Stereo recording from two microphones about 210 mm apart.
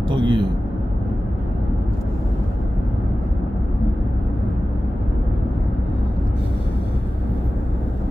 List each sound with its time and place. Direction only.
0.1 s speech: 25° right (ahead or behind)